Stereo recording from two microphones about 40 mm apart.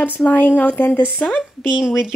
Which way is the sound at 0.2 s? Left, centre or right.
Left.